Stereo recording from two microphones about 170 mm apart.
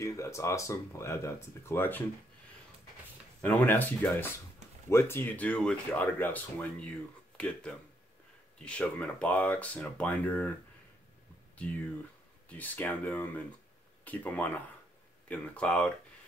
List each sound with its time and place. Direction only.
0.0 s speech: 15° left (ahead or behind)
3.3 s speech: 10° left (ahead or behind)
12.4 s speech: 10° left (ahead or behind)